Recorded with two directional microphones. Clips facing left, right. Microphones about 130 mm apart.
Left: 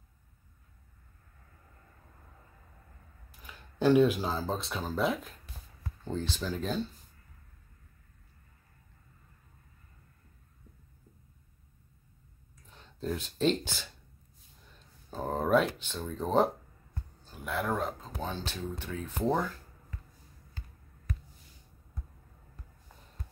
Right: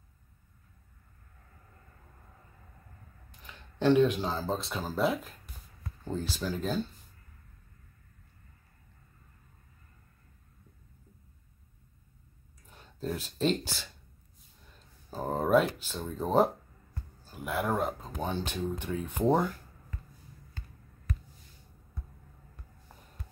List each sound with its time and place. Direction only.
3.3 s speech: 10° left (ahead or behind)
12.7 s speech: 5° right (ahead or behind)
15.0 s speech: 5° right (ahead or behind)
18.4 s speech: 50° right (ahead or behind)
19.1 s speech: 20° right (ahead or behind)